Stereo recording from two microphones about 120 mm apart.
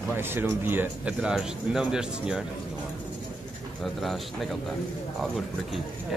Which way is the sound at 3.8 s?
Centre (ahead or behind).